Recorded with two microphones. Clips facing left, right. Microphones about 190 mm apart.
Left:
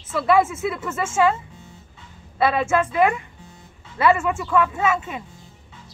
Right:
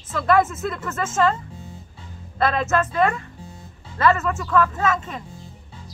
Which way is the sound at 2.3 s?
10° left (ahead or behind).